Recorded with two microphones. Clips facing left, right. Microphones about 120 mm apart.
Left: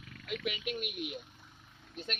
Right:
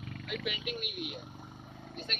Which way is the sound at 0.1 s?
50° right (ahead or behind).